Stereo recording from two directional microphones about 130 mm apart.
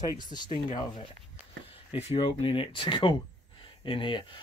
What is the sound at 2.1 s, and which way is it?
Speech, 45° left (ahead or behind).